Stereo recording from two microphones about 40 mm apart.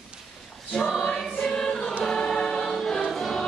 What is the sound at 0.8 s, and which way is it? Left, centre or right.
Choir, centre.